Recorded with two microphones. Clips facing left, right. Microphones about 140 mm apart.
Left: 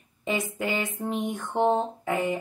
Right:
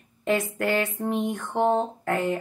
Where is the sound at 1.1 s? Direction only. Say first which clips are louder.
Right 2 dB; 20° right (ahead or behind).